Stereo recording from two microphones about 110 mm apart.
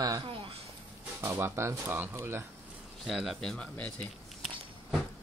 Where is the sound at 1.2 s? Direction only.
25° right (ahead or behind).